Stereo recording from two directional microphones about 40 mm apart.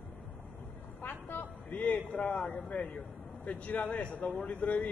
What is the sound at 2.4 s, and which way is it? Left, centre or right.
A woman's voice, left.